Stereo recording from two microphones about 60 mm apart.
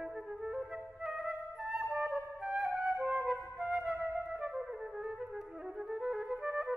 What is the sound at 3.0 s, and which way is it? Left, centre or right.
Flute, right.